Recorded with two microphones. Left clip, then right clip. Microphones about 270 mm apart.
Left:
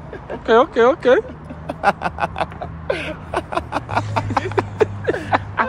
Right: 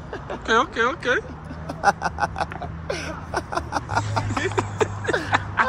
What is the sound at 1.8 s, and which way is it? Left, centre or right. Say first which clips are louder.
Vehicle: left 2 dB; left.